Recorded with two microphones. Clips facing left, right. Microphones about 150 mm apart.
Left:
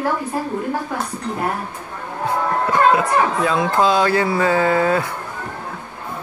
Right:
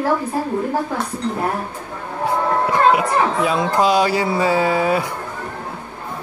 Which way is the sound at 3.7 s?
15° right (ahead or behind).